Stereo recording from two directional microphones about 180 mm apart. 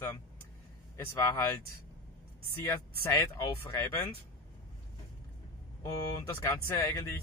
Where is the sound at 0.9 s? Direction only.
15° left (ahead or behind).